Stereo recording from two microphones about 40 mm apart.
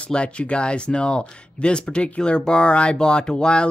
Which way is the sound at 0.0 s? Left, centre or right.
Left.